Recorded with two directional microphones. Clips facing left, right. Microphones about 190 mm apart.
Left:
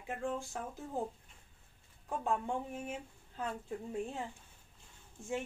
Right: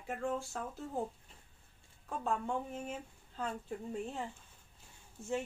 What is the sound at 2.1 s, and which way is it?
Speech, 15° left (ahead or behind).